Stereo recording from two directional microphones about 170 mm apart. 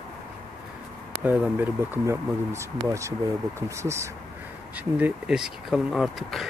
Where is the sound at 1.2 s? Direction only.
10° right (ahead or behind).